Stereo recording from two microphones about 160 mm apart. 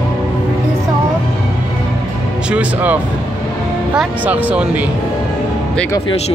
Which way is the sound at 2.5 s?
10° right (ahead or behind).